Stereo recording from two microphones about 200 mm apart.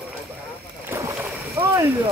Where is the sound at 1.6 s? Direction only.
20° right (ahead or behind).